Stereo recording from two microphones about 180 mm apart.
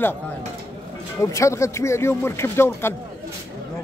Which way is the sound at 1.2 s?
15° left (ahead or behind).